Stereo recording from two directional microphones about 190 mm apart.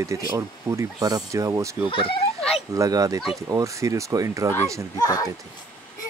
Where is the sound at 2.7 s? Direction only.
15° right (ahead or behind).